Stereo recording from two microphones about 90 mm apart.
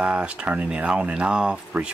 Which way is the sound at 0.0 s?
15° right (ahead or behind).